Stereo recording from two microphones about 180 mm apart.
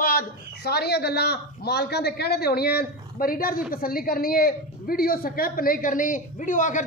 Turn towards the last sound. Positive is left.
turn(degrees=45)  # may be behind; listen again after turning